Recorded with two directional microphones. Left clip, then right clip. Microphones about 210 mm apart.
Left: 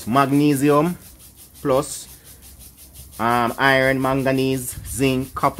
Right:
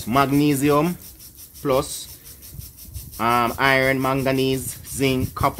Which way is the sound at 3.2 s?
15° left (ahead or behind).